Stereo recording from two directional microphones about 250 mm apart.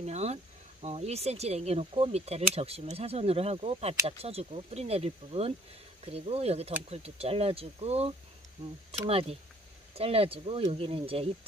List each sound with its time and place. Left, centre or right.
0.0 s insect: right
0.8 s speech: right